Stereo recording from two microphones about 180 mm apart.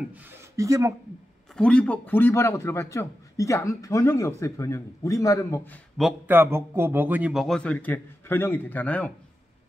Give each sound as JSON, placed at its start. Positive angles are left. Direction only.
{"t": 0.1, "sound": "speech", "side_deg": -15}
{"t": 1.5, "sound": "a man's voice", "side_deg": 5}
{"t": 5.9, "sound": "a man's voice", "side_deg": -5}